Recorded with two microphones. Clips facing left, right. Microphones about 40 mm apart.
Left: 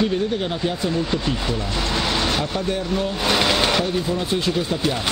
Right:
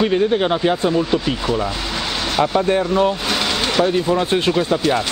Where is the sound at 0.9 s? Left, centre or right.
Centre.